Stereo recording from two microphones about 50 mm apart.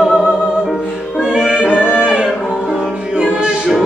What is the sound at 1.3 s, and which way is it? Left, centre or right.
Music, centre.